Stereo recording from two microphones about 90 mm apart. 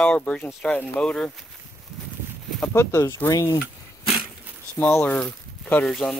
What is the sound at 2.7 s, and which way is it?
Speech, 30° left (ahead or behind).